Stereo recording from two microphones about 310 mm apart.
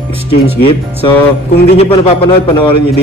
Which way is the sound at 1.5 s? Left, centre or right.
Left.